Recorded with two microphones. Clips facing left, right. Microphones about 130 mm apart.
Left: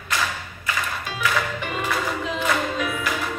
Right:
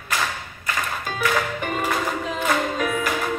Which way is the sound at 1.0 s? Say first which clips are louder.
Right 3 dB; 45° right (ahead or behind).